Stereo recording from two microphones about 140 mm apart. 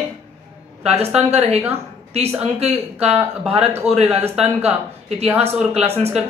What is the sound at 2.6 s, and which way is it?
Speech, 45° right (ahead or behind).